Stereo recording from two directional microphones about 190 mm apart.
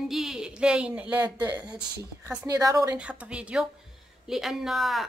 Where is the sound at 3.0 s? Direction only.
5° right (ahead or behind).